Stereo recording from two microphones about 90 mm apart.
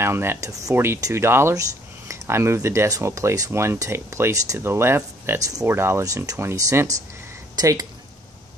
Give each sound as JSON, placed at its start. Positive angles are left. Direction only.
{"t": 0.0, "sound": "speech", "side_deg": -25}